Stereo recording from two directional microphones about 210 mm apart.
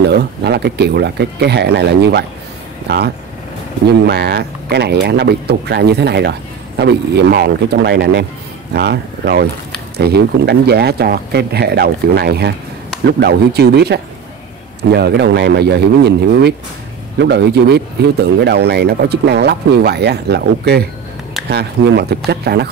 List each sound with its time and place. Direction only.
0.0 s speech: 55° right (ahead or behind)
3.8 s speech: 50° right (ahead or behind)